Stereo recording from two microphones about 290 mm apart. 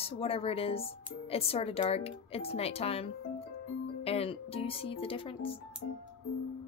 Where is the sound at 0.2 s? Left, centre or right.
Centre.